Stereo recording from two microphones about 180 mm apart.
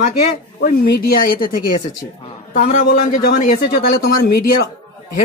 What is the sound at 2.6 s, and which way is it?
A man's voice, 45° left (ahead or behind).